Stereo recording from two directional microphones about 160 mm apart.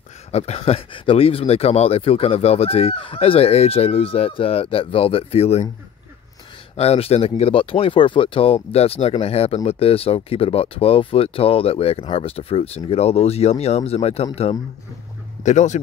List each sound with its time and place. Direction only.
0.3 s speech: 40° left (ahead or behind)
6.8 s speech: 40° left (ahead or behind)